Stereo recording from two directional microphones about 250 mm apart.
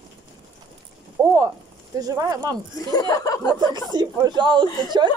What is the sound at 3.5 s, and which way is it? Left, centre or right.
Speech, centre.